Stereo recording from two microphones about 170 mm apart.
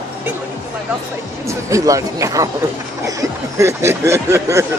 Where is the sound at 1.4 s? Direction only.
20° right (ahead or behind).